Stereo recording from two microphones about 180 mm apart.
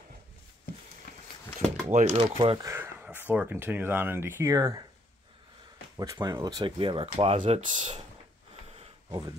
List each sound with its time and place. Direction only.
1.9 s speech: 40° right (ahead or behind)
2.7 s speech: 10° right (ahead or behind)
5.9 s speech: 20° right (ahead or behind); by 7.8 s 40° right (ahead or behind)